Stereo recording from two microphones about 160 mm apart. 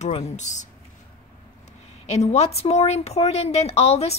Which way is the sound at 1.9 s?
45° left (ahead or behind).